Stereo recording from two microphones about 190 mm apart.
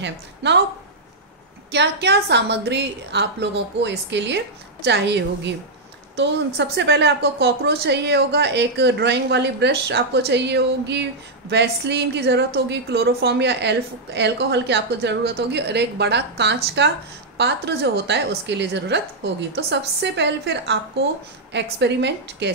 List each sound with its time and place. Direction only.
0.0 s a woman's voice: 65° right (ahead or behind)
1.7 s a woman's voice: 60° right (ahead or behind)